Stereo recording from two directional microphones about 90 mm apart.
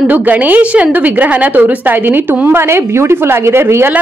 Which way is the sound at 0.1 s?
15° right (ahead or behind).